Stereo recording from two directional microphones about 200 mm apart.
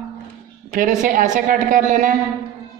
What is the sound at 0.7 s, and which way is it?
Speech, 40° right (ahead or behind).